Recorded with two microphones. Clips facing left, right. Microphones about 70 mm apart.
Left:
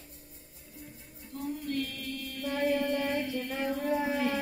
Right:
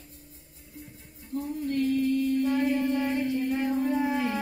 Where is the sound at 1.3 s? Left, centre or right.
Right.